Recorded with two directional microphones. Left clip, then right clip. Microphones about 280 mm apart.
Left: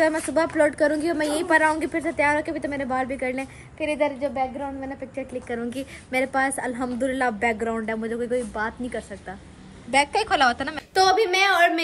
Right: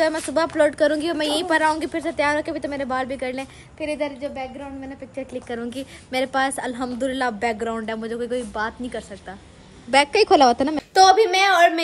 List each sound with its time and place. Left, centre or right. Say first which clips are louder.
0.0 s a woman's voice: right 1 dB; centre
5.3 s a woman's voice: right 1 dB; centre
10.3 s a woman's voice: right 5 dB; centre
11.0 s a woman's voice: right 4 dB; centre